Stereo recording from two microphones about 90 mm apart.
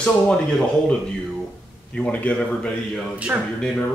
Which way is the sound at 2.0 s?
15° left (ahead or behind).